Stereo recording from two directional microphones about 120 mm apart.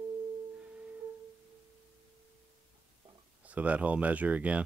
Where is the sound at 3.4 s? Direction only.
10° right (ahead or behind).